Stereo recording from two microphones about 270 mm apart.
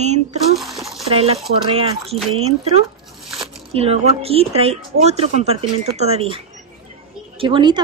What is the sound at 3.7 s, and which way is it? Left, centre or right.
A woman's voice, right.